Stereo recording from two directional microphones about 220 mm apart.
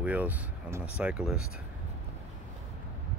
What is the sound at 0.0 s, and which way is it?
Speech, 5° right (ahead or behind).